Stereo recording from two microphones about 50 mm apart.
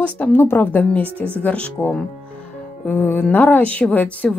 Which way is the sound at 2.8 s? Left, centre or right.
Left.